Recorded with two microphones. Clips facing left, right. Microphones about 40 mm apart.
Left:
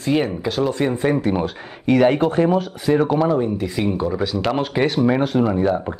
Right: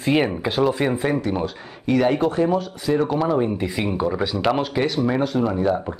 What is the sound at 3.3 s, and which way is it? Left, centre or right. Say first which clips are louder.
Speech: left 1 dB; centre.